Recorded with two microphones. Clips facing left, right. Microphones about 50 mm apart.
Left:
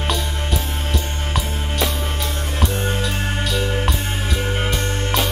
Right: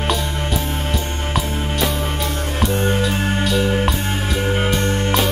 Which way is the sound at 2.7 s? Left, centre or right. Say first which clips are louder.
Right 4 dB; centre.